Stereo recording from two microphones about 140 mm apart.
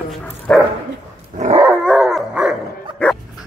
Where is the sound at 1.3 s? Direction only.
55° right (ahead or behind).